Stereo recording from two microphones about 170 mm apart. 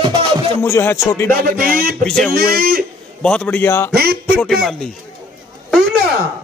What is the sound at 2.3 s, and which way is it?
Speech, 60° right (ahead or behind).